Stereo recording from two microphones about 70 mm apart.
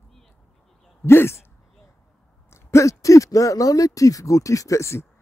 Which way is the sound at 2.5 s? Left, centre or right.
Left.